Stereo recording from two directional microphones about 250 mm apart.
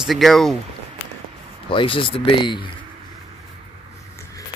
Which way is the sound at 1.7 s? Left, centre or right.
Left.